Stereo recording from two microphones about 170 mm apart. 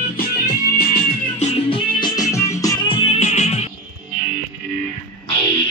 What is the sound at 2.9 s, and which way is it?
Music, 35° left (ahead or behind).